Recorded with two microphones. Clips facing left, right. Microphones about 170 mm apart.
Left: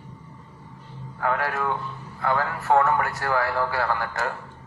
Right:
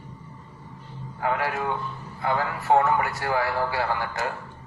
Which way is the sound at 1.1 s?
15° right (ahead or behind).